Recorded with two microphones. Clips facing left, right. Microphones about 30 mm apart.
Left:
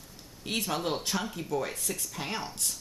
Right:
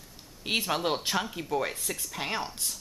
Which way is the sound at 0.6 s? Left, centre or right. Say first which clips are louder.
Right 2 dB; right.